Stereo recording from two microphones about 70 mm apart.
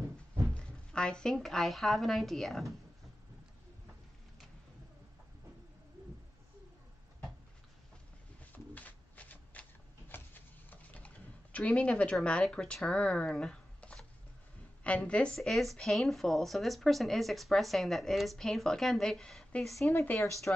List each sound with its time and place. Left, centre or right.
0.6 s speech: centre
8.7 s a sound: left
11.5 s a woman's voice: centre
15.3 s speech: centre
20.2 s speech: left